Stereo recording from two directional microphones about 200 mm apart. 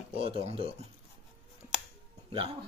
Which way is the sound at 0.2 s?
30° right (ahead or behind).